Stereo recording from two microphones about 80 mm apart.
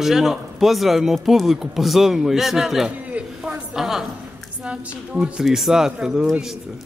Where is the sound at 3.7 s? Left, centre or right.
Centre.